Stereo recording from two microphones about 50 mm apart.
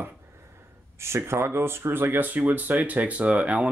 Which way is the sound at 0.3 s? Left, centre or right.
Right.